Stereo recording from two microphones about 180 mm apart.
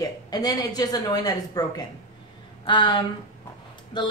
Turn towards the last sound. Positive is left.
turn(degrees=25)  # may be behind; listen again after turning